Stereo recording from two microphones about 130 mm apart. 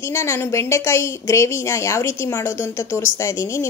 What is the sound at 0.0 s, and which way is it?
A woman's voice, 20° left (ahead or behind).